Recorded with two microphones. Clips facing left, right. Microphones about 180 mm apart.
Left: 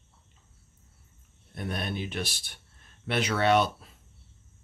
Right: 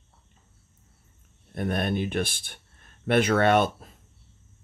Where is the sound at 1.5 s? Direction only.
50° right (ahead or behind).